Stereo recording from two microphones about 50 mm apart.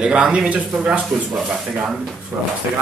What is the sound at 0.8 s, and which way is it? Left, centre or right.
Speech, right.